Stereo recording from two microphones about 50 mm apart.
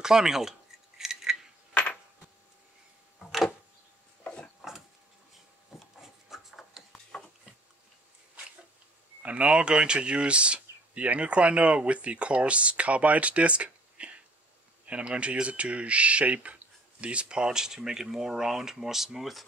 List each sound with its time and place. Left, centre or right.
0.0 s cutlery: centre
1.7 s a sound: left
4.2 s wood: left
4.6 s wood: centre
5.9 s rub: centre
6.9 s a sound: centre
9.2 s speech: right; by 19.4 s centre